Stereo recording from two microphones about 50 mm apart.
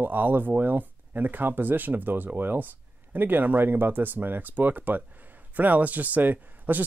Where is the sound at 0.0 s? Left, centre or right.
Right.